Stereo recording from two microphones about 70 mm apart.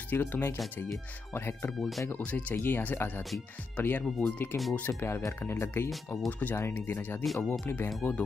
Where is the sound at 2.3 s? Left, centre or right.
Centre.